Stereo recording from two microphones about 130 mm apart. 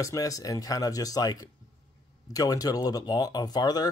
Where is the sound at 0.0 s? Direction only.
25° left (ahead or behind).